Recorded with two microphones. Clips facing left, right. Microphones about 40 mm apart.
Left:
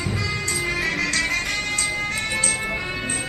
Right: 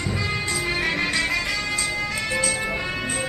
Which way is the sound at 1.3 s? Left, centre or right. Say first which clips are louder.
Even; left.